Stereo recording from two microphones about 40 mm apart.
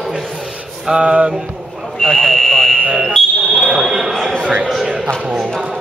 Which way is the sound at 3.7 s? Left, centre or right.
Centre.